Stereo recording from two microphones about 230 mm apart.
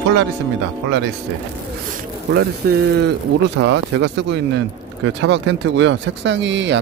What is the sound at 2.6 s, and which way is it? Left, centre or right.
Speech, right.